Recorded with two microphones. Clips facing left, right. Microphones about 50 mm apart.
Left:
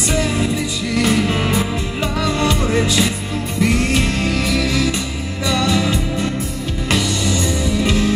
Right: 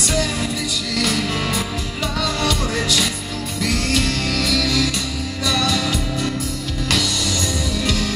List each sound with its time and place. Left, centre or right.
0.9 s music: left